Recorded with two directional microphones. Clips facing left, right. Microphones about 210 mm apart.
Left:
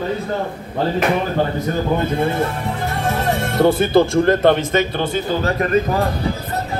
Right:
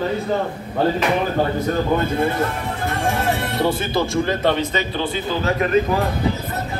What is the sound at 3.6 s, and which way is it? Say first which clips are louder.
Speech: left 8 dB; 55° left (ahead or behind).